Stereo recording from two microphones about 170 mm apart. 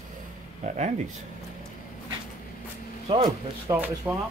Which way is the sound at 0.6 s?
40° right (ahead or behind).